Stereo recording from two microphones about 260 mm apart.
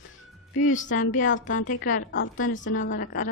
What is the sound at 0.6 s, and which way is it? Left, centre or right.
A woman's voice, left.